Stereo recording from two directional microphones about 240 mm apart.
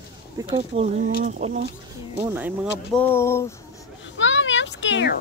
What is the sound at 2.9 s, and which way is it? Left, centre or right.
Speech, centre.